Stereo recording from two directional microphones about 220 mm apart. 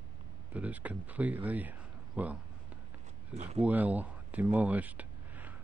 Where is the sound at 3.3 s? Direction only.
25° right (ahead or behind).